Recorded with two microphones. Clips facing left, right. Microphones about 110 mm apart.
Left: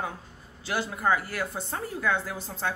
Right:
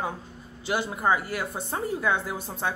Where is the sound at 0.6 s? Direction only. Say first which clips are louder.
Right 2 dB; 15° right (ahead or behind).